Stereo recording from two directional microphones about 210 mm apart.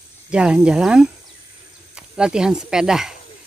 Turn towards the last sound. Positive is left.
turn(degrees=0)  # may be behind; listen again after turning